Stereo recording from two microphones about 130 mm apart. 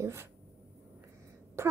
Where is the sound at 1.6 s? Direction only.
20° right (ahead or behind).